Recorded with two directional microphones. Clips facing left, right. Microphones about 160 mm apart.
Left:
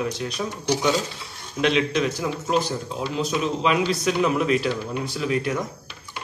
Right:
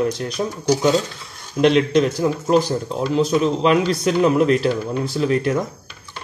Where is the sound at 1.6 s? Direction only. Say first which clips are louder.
Right 6 dB; 45° right (ahead or behind).